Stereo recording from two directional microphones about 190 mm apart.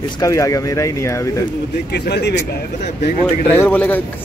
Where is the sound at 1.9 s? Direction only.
60° left (ahead or behind).